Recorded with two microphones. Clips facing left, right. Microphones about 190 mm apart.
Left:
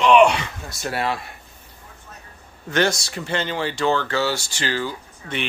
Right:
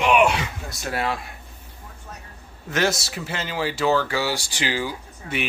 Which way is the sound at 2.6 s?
5° right (ahead or behind).